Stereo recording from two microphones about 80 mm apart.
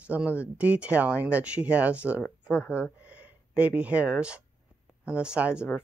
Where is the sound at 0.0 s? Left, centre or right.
Centre.